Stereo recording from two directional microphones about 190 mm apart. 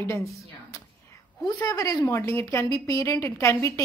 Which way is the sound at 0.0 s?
15° left (ahead or behind).